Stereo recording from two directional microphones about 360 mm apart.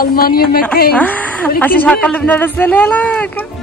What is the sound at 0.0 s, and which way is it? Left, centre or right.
Speech, left.